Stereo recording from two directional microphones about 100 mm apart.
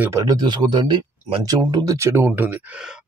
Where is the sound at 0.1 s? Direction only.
40° right (ahead or behind).